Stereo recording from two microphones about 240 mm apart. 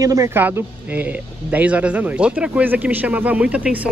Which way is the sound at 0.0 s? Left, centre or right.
Centre.